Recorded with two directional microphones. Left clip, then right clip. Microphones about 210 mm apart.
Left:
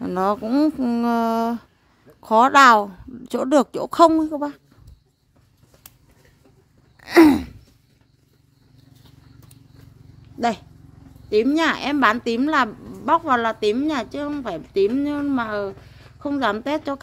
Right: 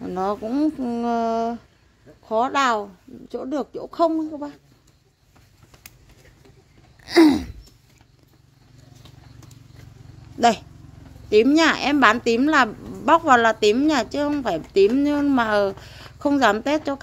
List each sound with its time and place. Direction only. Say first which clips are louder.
0.0 s a woman's voice: left 3 dB; 20° left (ahead or behind)
7.0 s gasp: left 2 dB; 15° left (ahead or behind)
11.2 s speech: right 3 dB; 5° right (ahead or behind)